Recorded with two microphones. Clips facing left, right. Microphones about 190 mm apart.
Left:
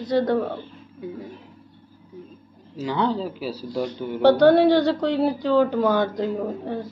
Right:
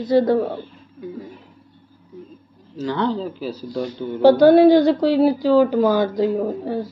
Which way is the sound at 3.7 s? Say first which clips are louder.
Right 1 dB; 5° right (ahead or behind).